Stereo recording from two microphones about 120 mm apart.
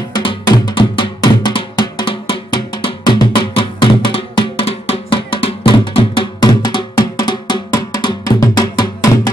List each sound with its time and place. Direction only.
0.1 s drum: 40° left (ahead or behind)